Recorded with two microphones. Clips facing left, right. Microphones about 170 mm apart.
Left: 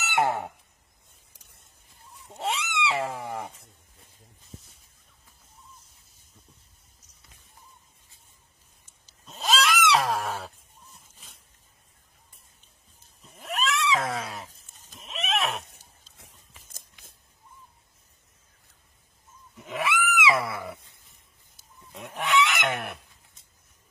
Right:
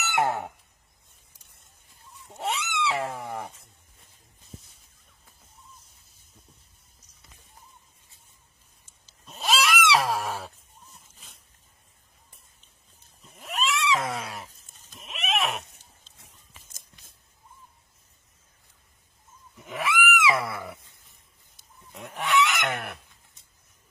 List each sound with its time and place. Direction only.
0.1 s fowl: centre (ahead or behind)
2.6 s cat: centre (ahead or behind)
9.2 s neigh: centre (ahead or behind)
13.2 s wild animals: centre (ahead or behind)
15.0 s a sound: centre (ahead or behind)
16.3 s scissors: 55° left (ahead or behind)
19.5 s pig: centre (ahead or behind)
20.2 s a sound: centre (ahead or behind)
22.2 s goose: centre (ahead or behind)